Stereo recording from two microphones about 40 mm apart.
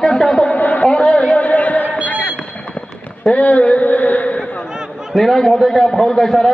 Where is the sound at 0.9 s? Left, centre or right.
Left.